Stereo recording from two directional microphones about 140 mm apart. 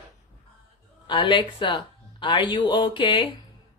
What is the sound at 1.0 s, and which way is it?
Speech, 35° left (ahead or behind).